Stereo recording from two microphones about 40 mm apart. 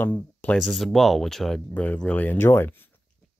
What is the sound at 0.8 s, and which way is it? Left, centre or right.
Speech, centre.